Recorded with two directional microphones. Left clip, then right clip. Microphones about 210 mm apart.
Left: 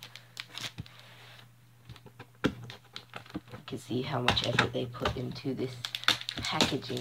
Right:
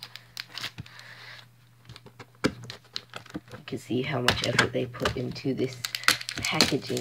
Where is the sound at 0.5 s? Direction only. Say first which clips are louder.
Right 4 dB; 5° left (ahead or behind).